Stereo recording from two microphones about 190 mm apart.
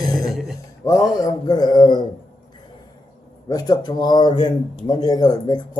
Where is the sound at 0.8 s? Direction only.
20° left (ahead or behind).